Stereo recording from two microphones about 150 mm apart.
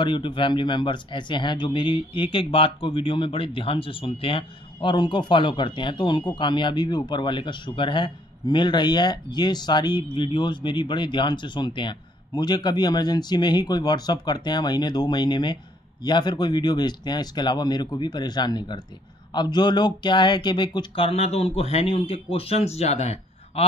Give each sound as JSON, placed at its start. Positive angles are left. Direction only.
{"t": 0.0, "sound": "speech", "side_deg": 30}